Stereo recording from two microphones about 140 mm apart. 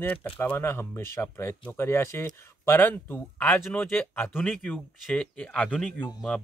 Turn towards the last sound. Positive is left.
turn(degrees=10)  # may be behind; listen again after turning